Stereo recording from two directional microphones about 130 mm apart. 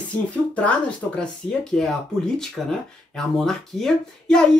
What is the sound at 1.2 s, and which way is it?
Speech, 5° left (ahead or behind).